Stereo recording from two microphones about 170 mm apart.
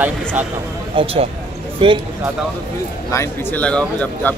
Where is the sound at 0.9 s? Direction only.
30° right (ahead or behind).